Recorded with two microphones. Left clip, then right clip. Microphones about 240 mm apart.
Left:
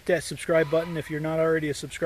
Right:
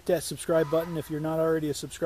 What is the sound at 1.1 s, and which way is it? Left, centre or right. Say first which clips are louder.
Speech: left 2 dB; centre.